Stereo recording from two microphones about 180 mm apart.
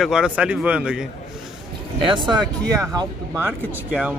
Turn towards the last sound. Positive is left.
turn(degrees=-10)  # may be behind; listen again after turning